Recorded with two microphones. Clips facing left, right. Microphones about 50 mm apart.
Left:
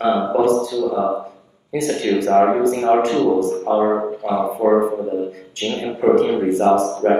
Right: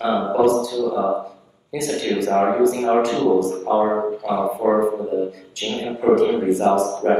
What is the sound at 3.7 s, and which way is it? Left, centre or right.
Speech, centre.